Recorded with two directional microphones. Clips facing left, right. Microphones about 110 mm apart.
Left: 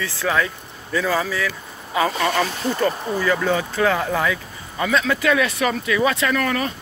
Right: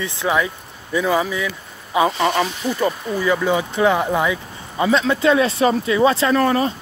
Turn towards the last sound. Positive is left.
turn(degrees=-30)  # may be behind; listen again after turning